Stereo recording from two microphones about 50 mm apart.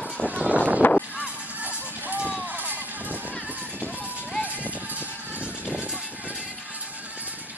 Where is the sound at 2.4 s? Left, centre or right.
Right.